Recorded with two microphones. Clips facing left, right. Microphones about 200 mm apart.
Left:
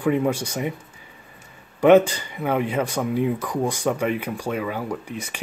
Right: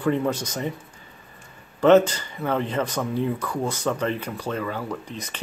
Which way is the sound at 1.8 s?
15° left (ahead or behind).